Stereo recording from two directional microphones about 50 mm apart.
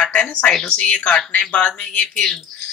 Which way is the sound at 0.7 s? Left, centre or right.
Left.